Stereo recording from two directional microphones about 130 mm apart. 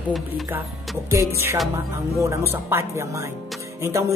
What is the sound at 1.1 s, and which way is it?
Speech, 20° right (ahead or behind).